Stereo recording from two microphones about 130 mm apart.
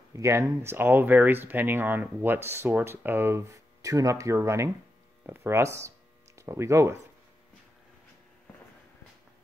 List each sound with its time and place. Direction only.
0.1 s speech: 20° right (ahead or behind)